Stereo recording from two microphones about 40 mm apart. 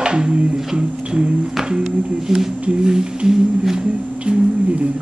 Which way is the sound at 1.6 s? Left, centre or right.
Centre.